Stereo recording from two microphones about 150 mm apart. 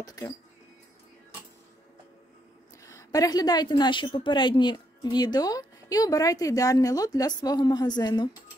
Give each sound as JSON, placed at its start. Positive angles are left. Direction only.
{"t": 0.0, "sound": "a woman's voice", "side_deg": 25}
{"t": 2.8, "sound": "a woman's voice", "side_deg": 20}